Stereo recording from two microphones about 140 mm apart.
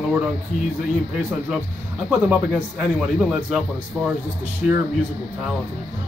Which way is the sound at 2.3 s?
10° right (ahead or behind).